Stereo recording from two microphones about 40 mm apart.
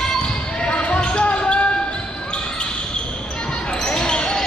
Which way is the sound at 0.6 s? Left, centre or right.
Left.